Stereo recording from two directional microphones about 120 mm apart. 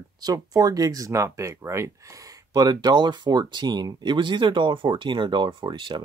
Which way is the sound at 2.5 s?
35° right (ahead or behind).